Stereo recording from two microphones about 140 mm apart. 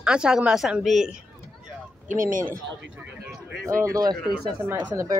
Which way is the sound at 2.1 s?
70° right (ahead or behind).